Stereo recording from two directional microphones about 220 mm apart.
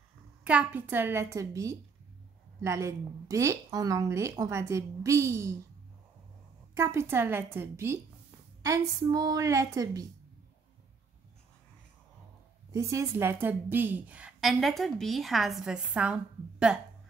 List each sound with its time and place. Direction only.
0.4 s a woman's voice: 5° right (ahead or behind)
6.7 s a woman's voice: 10° right (ahead or behind)
12.7 s a woman's voice: 15° right (ahead or behind)